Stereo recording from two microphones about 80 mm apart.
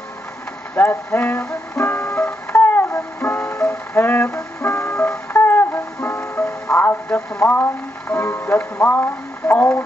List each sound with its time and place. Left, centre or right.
0.7 s speech: left
1.8 s music: left
6.8 s radio: left
7.4 s speech: left